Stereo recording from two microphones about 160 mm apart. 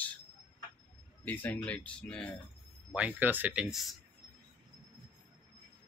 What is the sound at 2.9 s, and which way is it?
Speech, 5° right (ahead or behind).